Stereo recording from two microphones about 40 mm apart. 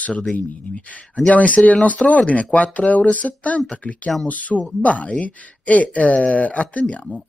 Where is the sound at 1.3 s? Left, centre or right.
Left.